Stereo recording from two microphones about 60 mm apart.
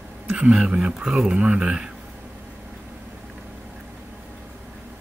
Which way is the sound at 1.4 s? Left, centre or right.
Centre.